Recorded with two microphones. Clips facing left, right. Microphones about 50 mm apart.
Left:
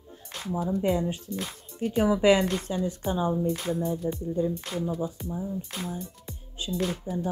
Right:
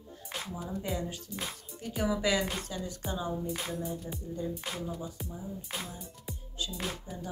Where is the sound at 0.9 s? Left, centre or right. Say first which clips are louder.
Left 8 dB; left.